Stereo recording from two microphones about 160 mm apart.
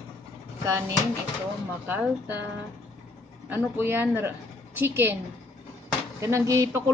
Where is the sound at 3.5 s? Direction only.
10° right (ahead or behind).